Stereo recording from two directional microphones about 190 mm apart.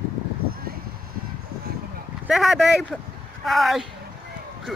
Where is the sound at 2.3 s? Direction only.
Centre (ahead or behind).